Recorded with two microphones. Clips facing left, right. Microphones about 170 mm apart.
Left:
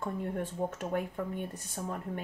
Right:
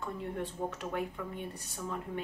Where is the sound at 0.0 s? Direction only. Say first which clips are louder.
Left 3 dB; 50° left (ahead or behind).